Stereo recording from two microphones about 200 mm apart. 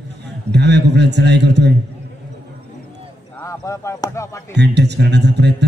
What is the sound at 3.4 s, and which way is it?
Speech, 15° left (ahead or behind).